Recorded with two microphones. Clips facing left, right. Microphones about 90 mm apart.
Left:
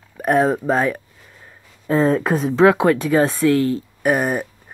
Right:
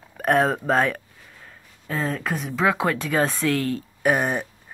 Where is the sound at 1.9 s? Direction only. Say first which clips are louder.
Left 10 dB; 35° left (ahead or behind).